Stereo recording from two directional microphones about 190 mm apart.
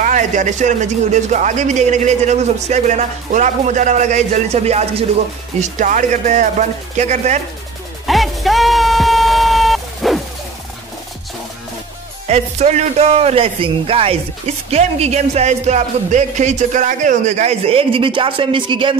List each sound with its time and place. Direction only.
0.0 s speech: 40° right (ahead or behind)
8.1 s a sound: centre (ahead or behind)
12.3 s speech: 35° right (ahead or behind)